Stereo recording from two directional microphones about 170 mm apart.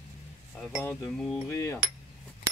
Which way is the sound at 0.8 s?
5° left (ahead or behind).